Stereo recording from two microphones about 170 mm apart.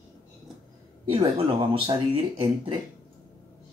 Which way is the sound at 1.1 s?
30° right (ahead or behind).